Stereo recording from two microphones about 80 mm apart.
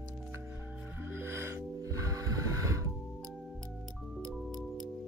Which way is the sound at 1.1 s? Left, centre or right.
Right.